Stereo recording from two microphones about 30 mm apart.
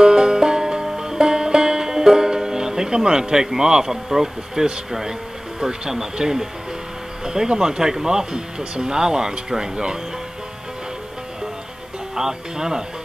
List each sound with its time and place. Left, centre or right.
0.0 s music: right
3.5 s speech: right
7.4 s speech: right
12.2 s speech: right